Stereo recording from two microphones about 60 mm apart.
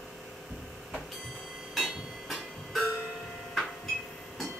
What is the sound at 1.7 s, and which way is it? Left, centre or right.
Train, centre.